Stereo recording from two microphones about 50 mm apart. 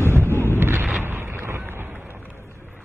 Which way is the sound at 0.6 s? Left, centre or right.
Right.